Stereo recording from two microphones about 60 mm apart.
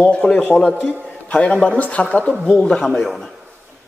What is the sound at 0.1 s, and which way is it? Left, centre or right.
A man's voice, centre.